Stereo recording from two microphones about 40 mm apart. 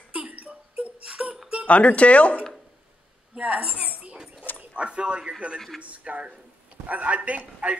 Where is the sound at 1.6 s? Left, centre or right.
Left.